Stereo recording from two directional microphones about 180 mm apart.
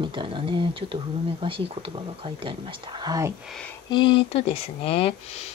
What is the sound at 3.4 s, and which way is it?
Speech, 5° left (ahead or behind).